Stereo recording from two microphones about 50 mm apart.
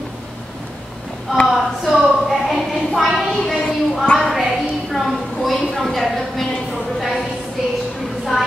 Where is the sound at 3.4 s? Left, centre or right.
Centre.